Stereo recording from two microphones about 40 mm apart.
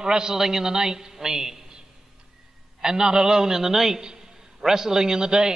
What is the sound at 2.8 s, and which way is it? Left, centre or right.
A man's voice, centre.